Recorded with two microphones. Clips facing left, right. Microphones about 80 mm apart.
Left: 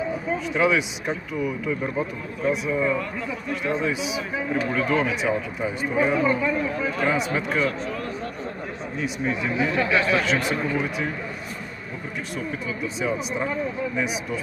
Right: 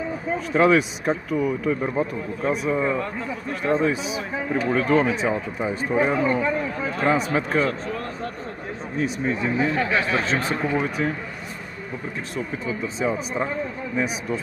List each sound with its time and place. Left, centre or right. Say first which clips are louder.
0.5 s speech: right 5 dB; right
2.0 s a man's voice: right 2 dB; right
12.6 s a man's voice: right 3 dB; right